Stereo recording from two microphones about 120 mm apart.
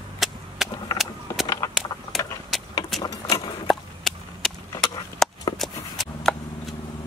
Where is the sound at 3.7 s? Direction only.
5° left (ahead or behind).